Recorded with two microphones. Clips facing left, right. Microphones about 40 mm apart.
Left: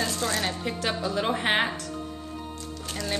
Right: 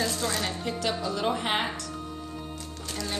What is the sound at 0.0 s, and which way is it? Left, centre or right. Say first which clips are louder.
Speech: left 1 dB; centre.